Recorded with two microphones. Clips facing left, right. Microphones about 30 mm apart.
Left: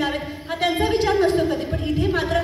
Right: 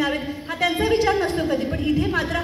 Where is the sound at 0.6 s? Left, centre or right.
Left.